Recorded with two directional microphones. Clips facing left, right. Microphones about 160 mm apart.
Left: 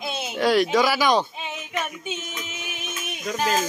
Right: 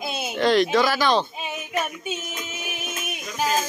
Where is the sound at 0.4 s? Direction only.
10° left (ahead or behind).